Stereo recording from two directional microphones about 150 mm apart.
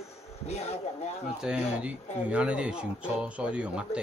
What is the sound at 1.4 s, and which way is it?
Speech, 5° right (ahead or behind).